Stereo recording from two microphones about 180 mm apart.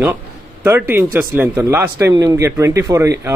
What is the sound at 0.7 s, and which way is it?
Speech, 10° right (ahead or behind).